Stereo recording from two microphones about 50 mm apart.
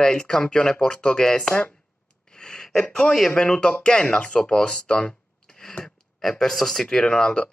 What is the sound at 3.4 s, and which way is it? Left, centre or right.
Speech, centre.